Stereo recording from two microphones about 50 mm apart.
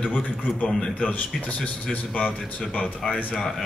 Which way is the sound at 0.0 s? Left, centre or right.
Left.